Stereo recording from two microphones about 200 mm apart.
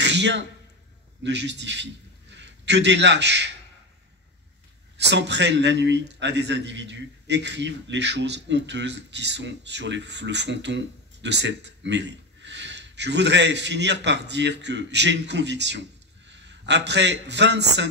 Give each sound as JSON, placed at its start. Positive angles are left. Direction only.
{"t": 0.0, "sound": "a sound", "side_deg": -60}
{"t": 1.2, "sound": "a man's voice", "side_deg": -60}
{"t": 4.9, "sound": "a man's voice", "side_deg": -60}